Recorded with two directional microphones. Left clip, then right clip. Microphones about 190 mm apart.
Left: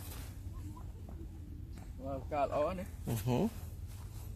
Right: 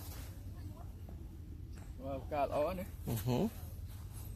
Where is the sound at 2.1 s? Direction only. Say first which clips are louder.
Left 1 dB; 10° left (ahead or behind).